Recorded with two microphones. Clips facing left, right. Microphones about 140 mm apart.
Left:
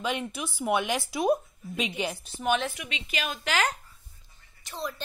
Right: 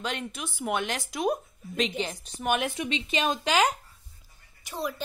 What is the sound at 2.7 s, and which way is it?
A woman's voice, 30° right (ahead or behind).